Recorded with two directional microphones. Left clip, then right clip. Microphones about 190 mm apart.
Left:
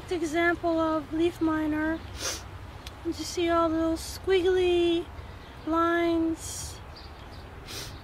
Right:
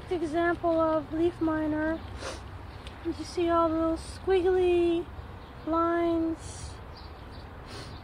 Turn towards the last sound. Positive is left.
turn(degrees=15)  # may be behind; listen again after turning